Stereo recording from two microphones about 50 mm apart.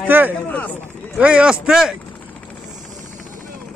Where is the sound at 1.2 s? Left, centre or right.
Right.